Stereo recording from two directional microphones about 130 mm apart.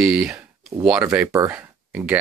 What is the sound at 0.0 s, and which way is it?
Speech, 5° right (ahead or behind).